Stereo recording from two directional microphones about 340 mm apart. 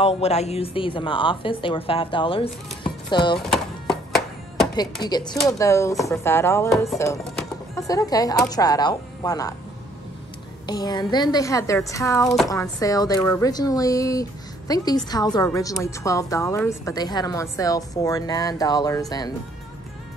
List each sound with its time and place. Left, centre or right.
0.0 s speech: centre
3.3 s music: centre
5.0 s speech: centre
10.7 s speech: centre